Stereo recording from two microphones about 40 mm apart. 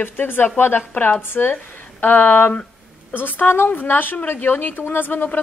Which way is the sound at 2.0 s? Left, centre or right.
Left.